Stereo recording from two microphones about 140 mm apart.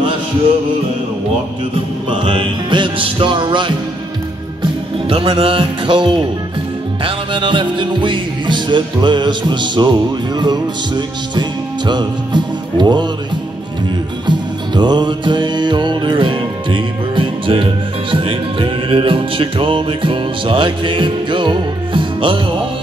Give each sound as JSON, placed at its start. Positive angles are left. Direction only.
{"t": 2.0, "sound": "music", "side_deg": -35}
{"t": 5.1, "sound": "music", "side_deg": -40}
{"t": 14.2, "sound": "music", "side_deg": -30}